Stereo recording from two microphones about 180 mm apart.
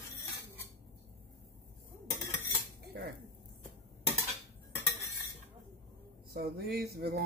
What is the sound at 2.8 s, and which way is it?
Cutlery, 65° right (ahead or behind).